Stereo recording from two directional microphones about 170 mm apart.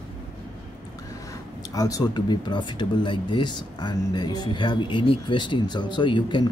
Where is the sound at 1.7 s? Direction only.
20° left (ahead or behind).